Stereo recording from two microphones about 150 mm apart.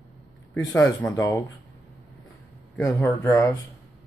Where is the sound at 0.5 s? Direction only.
15° left (ahead or behind).